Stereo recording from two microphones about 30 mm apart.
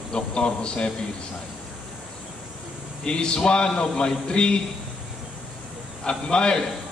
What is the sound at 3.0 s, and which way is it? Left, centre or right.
A man's voice, left.